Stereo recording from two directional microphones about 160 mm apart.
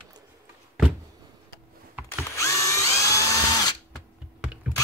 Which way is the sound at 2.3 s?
20° left (ahead or behind).